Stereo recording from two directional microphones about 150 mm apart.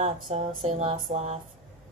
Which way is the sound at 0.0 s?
45° right (ahead or behind).